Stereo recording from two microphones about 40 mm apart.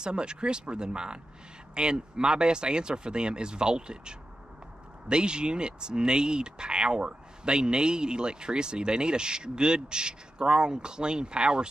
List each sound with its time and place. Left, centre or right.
0.0 s speech: right